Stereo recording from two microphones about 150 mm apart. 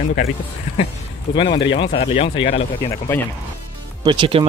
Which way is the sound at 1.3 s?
35° left (ahead or behind).